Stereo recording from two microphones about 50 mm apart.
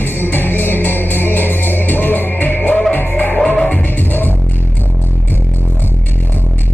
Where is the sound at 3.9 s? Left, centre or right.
Left.